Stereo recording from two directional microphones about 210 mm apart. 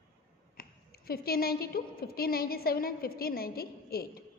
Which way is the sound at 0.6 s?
45° left (ahead or behind).